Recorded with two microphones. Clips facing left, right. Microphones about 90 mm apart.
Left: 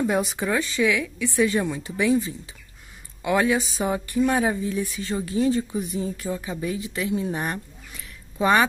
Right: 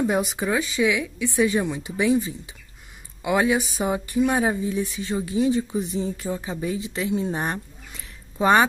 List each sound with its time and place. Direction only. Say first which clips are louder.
0.0 s speech: right 1 dB; 15° right (ahead or behind)